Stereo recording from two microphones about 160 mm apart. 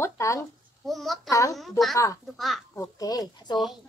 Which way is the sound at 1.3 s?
20° left (ahead or behind).